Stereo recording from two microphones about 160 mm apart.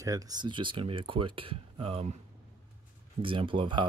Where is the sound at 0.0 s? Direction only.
20° right (ahead or behind); by 2.0 s 35° right (ahead or behind).